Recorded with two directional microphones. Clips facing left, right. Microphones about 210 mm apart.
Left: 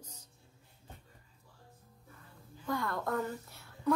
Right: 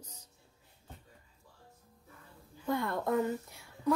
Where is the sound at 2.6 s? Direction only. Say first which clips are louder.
Right 3 dB; 25° right (ahead or behind).